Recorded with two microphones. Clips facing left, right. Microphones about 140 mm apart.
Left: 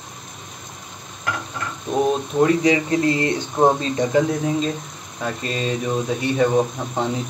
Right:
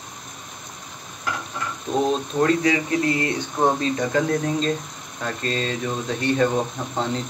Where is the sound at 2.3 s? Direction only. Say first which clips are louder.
Left 3 dB; 15° left (ahead or behind).